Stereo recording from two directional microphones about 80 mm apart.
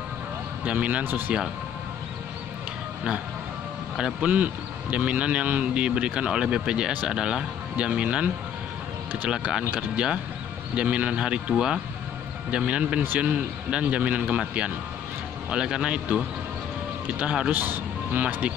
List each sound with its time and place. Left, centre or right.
0.7 s speech: centre
3.9 s a man's voice: centre
9.3 s a man's voice: centre
17.2 s a man's voice: centre